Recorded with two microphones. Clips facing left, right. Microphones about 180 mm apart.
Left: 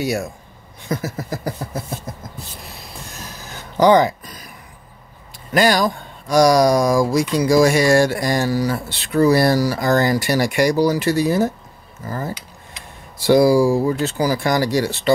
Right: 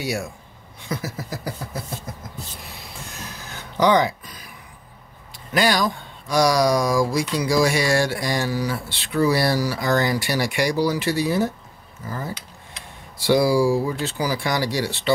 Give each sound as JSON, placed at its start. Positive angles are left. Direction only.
{"t": 0.0, "sound": "speech", "side_deg": 45}
{"t": 3.7, "sound": "a sound", "side_deg": 45}
{"t": 5.5, "sound": "speech", "side_deg": 45}